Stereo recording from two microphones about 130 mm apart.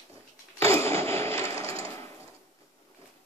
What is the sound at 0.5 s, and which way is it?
Mechanisms, 20° left (ahead or behind).